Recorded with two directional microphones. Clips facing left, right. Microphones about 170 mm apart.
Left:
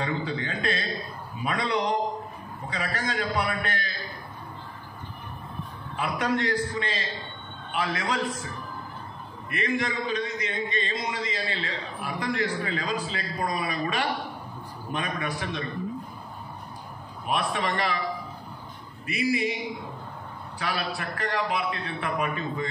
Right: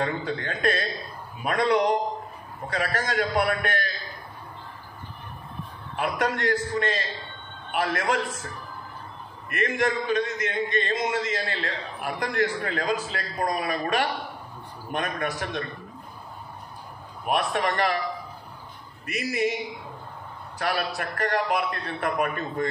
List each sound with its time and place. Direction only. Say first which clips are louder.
0.0 s a man's voice: right 1 dB; 45° right (ahead or behind)
5.9 s a man's voice: even; 50° right (ahead or behind)
9.5 s a man's voice: right 3 dB; 45° right (ahead or behind)
17.6 s a man's voice: right 3 dB; 45° right (ahead or behind)
19.0 s a man's voice: even; 45° right (ahead or behind)
20.5 s a man's voice: right 3 dB; 45° right (ahead or behind)